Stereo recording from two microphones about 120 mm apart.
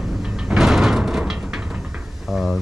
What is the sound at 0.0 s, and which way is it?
Sliding door, 5° right (ahead or behind).